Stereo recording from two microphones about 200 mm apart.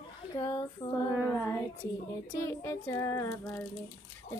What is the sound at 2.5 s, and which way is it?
A woman's voice, 15° left (ahead or behind).